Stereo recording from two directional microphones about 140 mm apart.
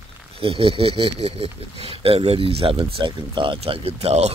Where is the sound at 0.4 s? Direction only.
40° right (ahead or behind).